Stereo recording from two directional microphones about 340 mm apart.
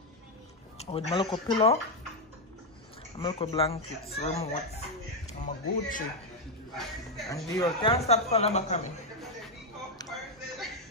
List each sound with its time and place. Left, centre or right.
0.7 s speech: centre
3.2 s speech: centre
7.2 s a man's voice: centre